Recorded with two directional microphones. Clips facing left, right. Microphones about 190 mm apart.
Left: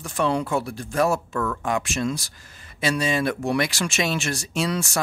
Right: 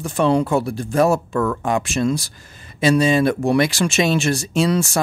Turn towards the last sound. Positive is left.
turn(degrees=-30)  # may be behind; listen again after turning